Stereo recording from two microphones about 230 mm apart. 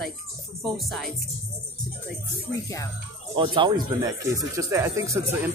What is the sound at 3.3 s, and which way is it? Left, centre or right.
Speech, right.